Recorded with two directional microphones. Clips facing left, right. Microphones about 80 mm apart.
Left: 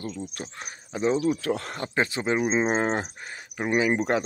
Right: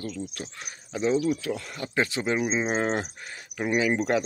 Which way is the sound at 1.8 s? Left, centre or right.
Left.